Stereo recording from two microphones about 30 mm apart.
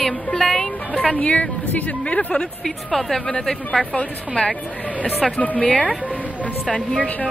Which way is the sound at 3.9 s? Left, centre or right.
Left.